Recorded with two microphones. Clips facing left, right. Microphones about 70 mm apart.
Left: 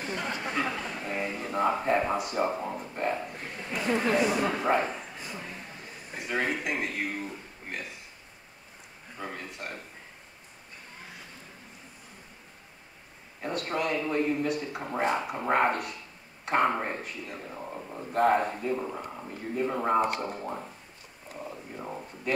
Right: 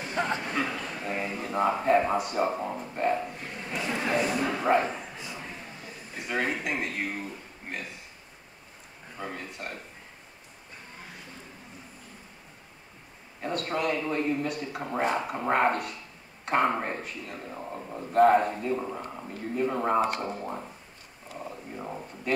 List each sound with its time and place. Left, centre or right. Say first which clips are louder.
0.1 s a sound: right 6 dB; right
0.7 s a man's voice: even; centre
6.1 s a man's voice: even; centre
9.2 s a man's voice: right 1 dB; centre
13.4 s a man's voice: right 1 dB; centre